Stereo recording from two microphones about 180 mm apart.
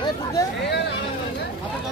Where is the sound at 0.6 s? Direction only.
70° left (ahead or behind).